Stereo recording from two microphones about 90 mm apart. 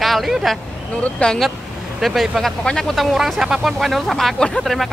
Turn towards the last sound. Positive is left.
turn(degrees=0)  # may be behind; listen again after turning